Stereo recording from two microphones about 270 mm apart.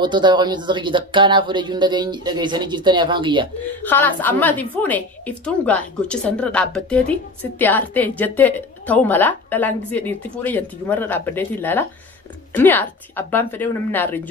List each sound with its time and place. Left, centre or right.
0.0 s speech: centre
3.8 s a woman's voice: centre